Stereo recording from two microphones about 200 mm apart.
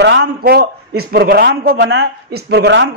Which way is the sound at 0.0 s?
60° right (ahead or behind).